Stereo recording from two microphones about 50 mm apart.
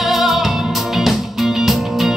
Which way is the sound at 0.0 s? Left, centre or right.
Centre.